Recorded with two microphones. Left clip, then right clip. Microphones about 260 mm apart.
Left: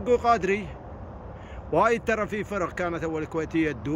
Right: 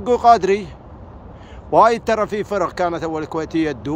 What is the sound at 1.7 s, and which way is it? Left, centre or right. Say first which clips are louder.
Speech: right 9 dB; centre.